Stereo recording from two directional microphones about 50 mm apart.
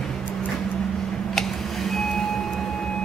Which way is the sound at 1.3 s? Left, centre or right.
Centre.